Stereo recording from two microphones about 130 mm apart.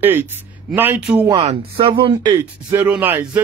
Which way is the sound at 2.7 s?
15° right (ahead or behind).